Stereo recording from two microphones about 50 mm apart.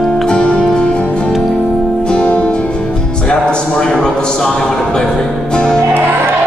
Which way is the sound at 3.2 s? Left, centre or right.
Centre.